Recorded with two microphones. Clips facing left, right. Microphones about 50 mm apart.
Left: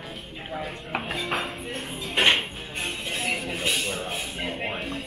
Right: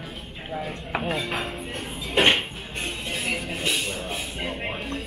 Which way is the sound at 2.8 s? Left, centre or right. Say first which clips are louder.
Even; centre.